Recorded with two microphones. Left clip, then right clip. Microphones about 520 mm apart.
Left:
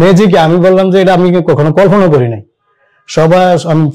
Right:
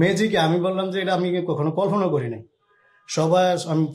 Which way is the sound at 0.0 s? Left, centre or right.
Left.